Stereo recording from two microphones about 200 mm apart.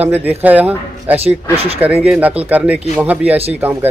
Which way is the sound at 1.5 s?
30° right (ahead or behind).